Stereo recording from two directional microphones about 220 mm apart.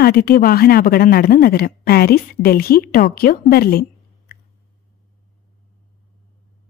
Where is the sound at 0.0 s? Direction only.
40° left (ahead or behind).